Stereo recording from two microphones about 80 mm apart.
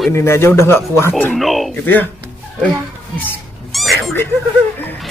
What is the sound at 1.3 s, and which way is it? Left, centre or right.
Speech, centre.